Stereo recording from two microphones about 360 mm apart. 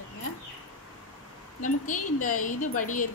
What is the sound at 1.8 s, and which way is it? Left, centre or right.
Speech, left.